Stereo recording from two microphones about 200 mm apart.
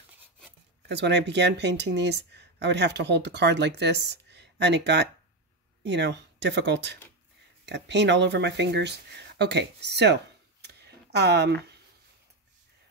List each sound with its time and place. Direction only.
0.8 s speech: 60° right (ahead or behind)